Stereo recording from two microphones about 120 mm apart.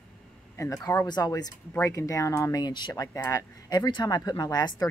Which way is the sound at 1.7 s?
25° left (ahead or behind).